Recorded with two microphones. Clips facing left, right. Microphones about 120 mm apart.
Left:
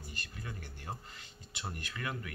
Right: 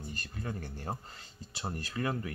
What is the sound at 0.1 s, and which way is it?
Speech, 40° right (ahead or behind).